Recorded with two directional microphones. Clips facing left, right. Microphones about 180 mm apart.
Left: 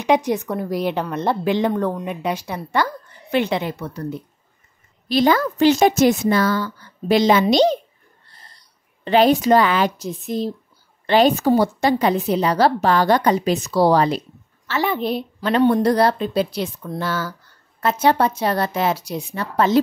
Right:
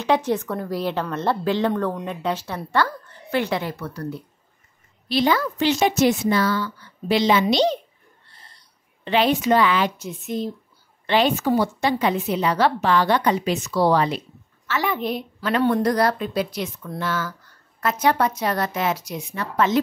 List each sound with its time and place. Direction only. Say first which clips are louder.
0.0 s a woman's voice: left 2 dB; 15° left (ahead or behind)
5.0 s a woman's voice: left 4 dB; 45° left (ahead or behind)